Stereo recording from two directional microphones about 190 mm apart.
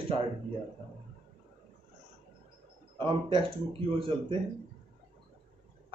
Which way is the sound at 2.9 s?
25° right (ahead or behind).